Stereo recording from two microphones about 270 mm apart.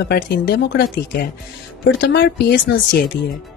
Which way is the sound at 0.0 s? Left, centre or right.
Left.